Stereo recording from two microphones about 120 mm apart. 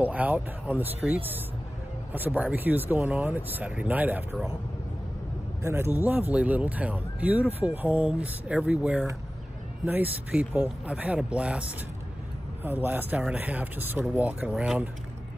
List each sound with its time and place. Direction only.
0.0 s speech: 15° right (ahead or behind)
5.6 s speech: 20° right (ahead or behind)
12.6 s speech: 15° right (ahead or behind)